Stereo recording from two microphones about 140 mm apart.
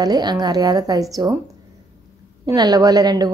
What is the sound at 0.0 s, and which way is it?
A woman's voice, 30° right (ahead or behind).